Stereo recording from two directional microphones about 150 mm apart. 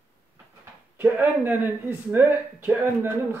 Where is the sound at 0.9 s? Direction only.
10° right (ahead or behind).